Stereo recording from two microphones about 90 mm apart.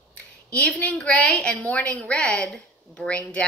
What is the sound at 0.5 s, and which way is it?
A woman's voice, 15° left (ahead or behind).